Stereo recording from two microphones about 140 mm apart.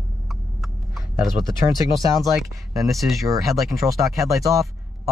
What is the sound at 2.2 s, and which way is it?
Speech, centre (ahead or behind).